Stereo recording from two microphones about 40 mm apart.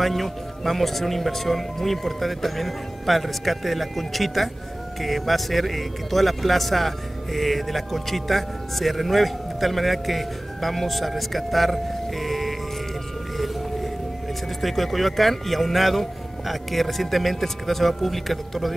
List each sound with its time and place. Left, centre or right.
0.0 s speech: centre
14.6 s speech: centre